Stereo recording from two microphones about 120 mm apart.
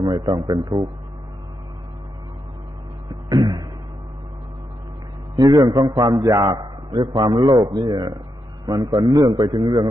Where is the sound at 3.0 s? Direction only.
35° right (ahead or behind).